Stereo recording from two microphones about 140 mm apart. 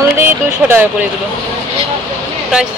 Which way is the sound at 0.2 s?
15° right (ahead or behind).